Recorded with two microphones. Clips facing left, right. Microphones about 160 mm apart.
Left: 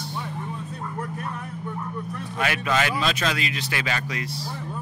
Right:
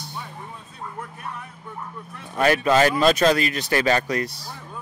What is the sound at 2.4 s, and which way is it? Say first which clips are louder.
Speech: right 7 dB; 40° right (ahead or behind).